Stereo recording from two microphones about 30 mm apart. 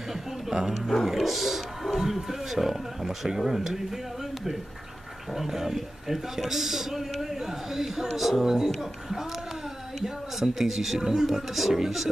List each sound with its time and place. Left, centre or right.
0.1 s speech: centre
5.3 s speech: centre
10.0 s speech: centre